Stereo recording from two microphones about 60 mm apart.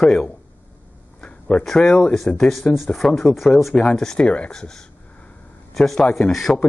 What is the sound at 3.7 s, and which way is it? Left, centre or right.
Speech, centre.